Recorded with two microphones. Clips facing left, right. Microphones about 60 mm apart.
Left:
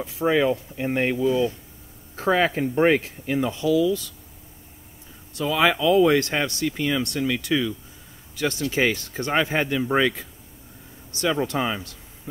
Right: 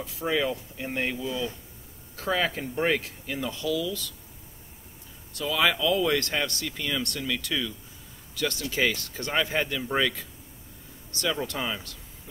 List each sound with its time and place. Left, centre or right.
0.0 s speech: left
5.3 s speech: left